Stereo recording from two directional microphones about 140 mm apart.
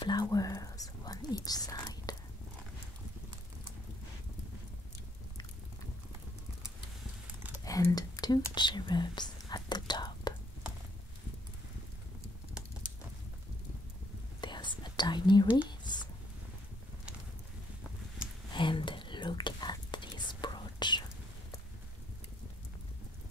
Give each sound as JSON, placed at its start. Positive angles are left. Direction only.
{"t": 0.0, "sound": "whispering", "side_deg": 30}
{"t": 7.6, "sound": "whispering", "side_deg": 25}
{"t": 14.4, "sound": "whispering", "side_deg": 35}
{"t": 15.8, "sound": "a sound", "side_deg": 30}
{"t": 18.5, "sound": "whispering", "side_deg": 35}